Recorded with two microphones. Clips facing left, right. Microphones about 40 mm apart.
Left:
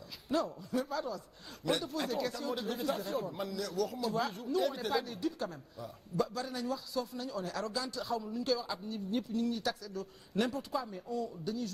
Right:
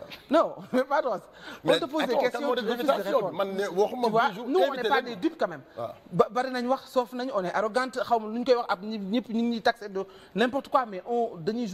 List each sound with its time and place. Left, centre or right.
0.3 s a man's voice: right